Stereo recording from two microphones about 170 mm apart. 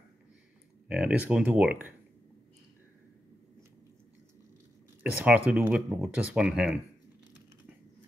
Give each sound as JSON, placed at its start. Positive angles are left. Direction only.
{"t": 0.8, "sound": "speech", "side_deg": -5}
{"t": 5.2, "sound": "speech", "side_deg": -5}